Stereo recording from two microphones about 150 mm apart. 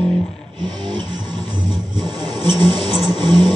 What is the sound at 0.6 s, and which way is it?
Music, 30° right (ahead or behind).